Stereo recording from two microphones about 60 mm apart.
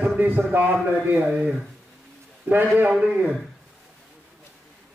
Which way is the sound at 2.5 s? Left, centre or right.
Right.